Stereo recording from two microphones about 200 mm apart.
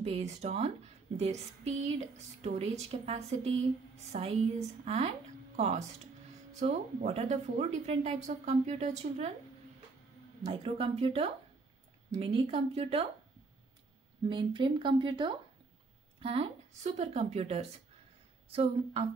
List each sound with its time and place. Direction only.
0.0 s a woman's voice: 35° right (ahead or behind)
10.4 s speech: 30° right (ahead or behind)
14.3 s a woman's voice: 25° right (ahead or behind)